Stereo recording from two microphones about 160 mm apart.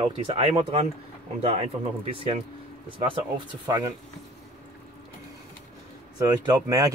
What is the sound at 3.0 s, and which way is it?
Speech, 25° right (ahead or behind).